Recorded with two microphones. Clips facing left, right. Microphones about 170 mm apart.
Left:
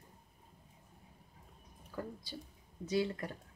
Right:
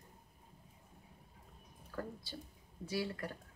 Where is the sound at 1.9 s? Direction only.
15° left (ahead or behind).